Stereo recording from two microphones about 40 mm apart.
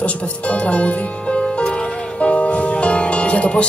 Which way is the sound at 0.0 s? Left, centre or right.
Left.